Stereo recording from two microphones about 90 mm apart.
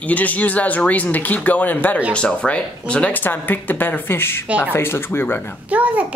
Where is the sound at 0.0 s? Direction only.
15° left (ahead or behind).